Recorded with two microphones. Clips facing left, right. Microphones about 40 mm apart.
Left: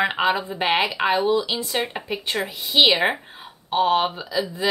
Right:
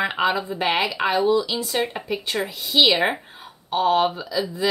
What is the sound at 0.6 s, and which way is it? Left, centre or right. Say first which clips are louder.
Speech: even; left.